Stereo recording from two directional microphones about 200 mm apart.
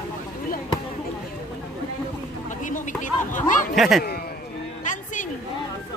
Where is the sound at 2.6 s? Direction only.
40° left (ahead or behind).